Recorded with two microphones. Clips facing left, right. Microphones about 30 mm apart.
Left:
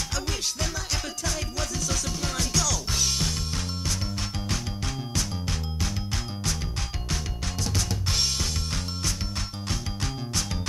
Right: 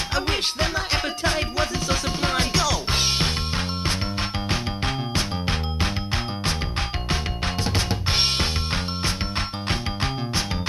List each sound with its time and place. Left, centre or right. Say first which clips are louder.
0.1 s music: right 7 dB; right
7.6 s music: right 2 dB; right